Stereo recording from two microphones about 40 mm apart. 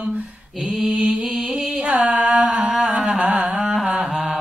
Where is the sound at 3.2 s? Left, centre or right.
Right.